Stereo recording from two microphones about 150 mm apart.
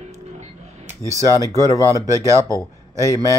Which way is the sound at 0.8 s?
20° right (ahead or behind).